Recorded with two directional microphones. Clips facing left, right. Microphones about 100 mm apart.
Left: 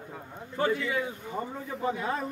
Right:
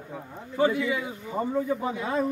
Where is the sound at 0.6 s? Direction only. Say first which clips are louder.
Right 4 dB; 15° right (ahead or behind).